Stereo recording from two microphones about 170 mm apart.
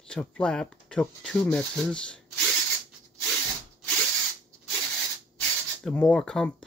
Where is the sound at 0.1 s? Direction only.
5° left (ahead or behind).